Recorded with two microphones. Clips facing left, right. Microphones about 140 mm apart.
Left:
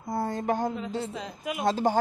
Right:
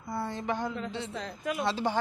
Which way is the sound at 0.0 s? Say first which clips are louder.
Left 5 dB; 45° left (ahead or behind).